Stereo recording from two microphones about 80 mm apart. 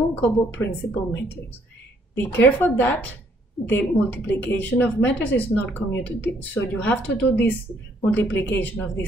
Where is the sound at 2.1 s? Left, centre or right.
Left.